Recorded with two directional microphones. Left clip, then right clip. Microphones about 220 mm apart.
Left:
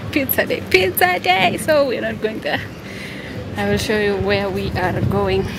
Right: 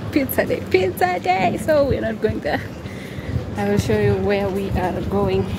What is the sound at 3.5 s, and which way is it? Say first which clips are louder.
A woman's voice: left 1 dB; 5° right (ahead or behind).